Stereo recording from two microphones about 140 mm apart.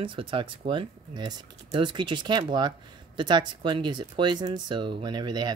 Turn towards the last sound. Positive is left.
turn(degrees=-30)  # may be behind; listen again after turning